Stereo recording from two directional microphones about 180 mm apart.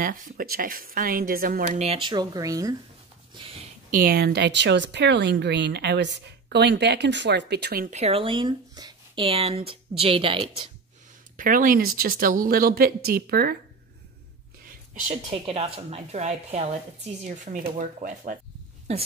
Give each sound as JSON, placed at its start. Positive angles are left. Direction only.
{"t": 0.0, "sound": "speech", "side_deg": -50}
{"t": 1.8, "sound": "speech", "side_deg": -30}
{"t": 3.3, "sound": "a sound", "side_deg": -30}
{"t": 3.9, "sound": "speech", "side_deg": -55}
{"t": 7.9, "sound": "a woman's voice", "side_deg": -35}
{"t": 11.3, "sound": "speech", "side_deg": -50}
{"t": 14.6, "sound": "a sound", "side_deg": -50}
{"t": 15.2, "sound": "a woman's voice", "side_deg": -30}
{"t": 18.9, "sound": "a woman's voice", "side_deg": -35}